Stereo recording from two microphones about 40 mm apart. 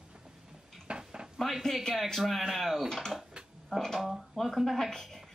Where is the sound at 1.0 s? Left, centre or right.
Centre.